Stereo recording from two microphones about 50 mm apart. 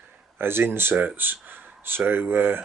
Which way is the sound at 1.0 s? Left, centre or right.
Right.